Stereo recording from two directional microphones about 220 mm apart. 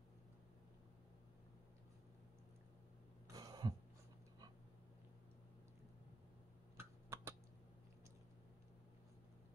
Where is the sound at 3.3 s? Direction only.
15° right (ahead or behind).